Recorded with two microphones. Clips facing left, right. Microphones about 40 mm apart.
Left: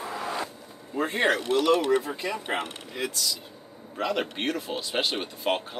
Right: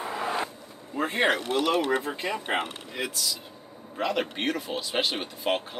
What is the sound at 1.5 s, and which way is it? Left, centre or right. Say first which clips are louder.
Speech: left 3 dB; right.